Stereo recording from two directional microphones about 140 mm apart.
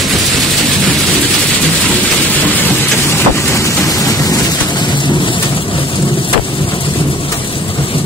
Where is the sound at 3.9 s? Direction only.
25° left (ahead or behind).